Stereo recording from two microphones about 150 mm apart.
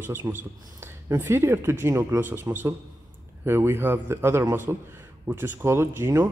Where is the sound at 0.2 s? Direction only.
20° right (ahead or behind).